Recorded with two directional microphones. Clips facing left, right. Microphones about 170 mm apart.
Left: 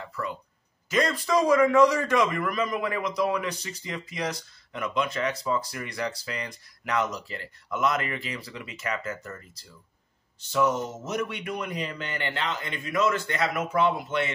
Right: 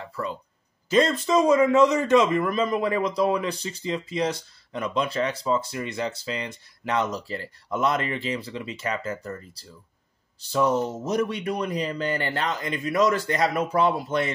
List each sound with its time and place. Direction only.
0.0 s a man's voice: 30° right (ahead or behind)